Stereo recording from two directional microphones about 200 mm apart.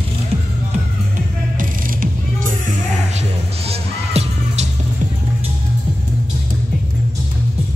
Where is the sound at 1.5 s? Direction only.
45° right (ahead or behind).